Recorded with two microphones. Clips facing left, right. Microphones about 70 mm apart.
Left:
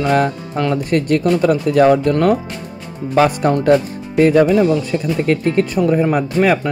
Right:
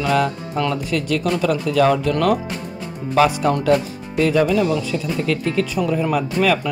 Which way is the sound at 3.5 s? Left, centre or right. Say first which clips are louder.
Left 4 dB; left.